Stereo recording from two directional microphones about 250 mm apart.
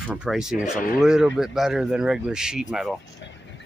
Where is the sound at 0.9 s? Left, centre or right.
Centre.